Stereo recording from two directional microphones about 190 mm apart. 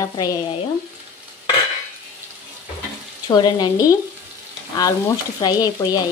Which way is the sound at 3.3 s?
25° left (ahead or behind).